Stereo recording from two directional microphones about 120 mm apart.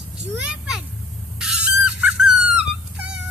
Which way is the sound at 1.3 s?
5° right (ahead or behind).